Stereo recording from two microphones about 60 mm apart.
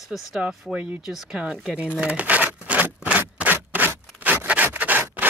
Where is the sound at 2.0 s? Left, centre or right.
Right.